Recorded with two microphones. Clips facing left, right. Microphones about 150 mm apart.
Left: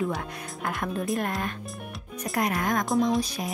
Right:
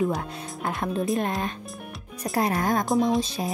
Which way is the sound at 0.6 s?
25° right (ahead or behind).